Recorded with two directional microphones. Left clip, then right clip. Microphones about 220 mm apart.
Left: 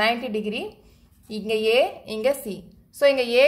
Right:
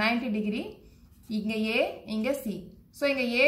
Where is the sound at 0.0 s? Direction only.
45° left (ahead or behind).